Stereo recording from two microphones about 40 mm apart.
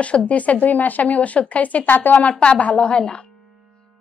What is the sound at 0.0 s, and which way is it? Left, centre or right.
A woman's voice, left.